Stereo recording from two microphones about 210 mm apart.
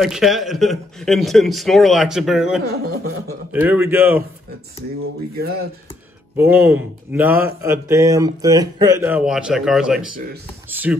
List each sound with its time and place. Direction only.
0.0 s a man's voice: centre (ahead or behind)
2.6 s a sound: 50° right (ahead or behind)
3.5 s speech: 10° right (ahead or behind)
6.3 s speech: 10° right (ahead or behind)
10.7 s typing: 10° right (ahead or behind)